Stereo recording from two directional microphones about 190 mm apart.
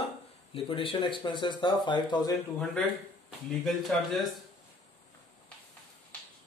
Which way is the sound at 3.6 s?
Centre (ahead or behind).